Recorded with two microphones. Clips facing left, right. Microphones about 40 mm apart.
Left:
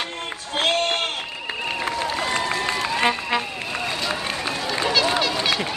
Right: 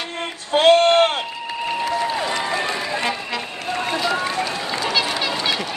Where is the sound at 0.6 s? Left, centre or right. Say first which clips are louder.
Right 9 dB; right.